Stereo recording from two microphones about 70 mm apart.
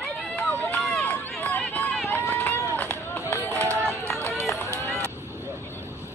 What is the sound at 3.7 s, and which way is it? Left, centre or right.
Run, right.